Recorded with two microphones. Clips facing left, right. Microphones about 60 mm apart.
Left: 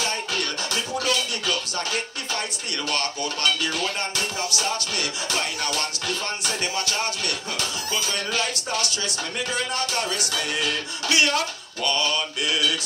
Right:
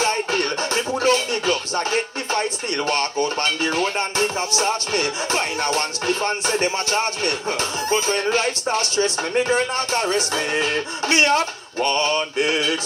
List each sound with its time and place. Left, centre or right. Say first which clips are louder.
0.0 s music: right 6 dB; right
2.9 s speech: right 6 dB; right